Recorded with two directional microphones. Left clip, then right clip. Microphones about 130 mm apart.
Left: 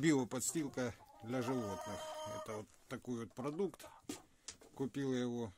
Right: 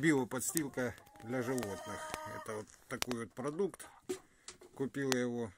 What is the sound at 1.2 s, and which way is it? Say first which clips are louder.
Speech: right 2 dB; 25° left (ahead or behind).